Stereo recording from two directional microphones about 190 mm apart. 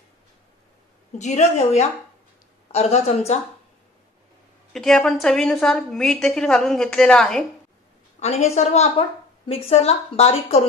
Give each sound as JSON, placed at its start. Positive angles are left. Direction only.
{"t": 1.1, "sound": "a woman's voice", "side_deg": 35}
{"t": 4.7, "sound": "a woman's voice", "side_deg": 0}
{"t": 8.2, "sound": "a woman's voice", "side_deg": 35}